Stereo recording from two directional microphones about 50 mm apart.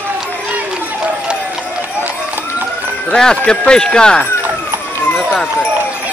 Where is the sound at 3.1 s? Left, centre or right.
Centre.